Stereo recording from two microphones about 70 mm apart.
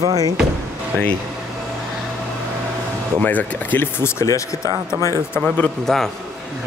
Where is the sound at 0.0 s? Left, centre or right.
Right.